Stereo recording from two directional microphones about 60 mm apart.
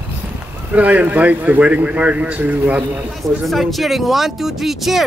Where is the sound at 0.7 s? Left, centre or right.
Right.